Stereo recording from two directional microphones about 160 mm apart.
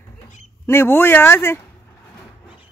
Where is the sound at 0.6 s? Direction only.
15° left (ahead or behind).